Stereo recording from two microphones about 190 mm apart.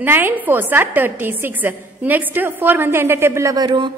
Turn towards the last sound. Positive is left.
turn(degrees=-25)  # may be behind; listen again after turning